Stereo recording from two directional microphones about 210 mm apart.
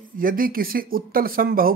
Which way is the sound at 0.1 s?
40° right (ahead or behind).